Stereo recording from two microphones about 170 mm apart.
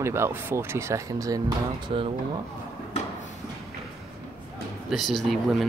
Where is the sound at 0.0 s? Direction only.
15° right (ahead or behind).